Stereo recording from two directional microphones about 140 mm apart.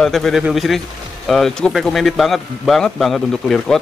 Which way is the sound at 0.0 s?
5° left (ahead or behind).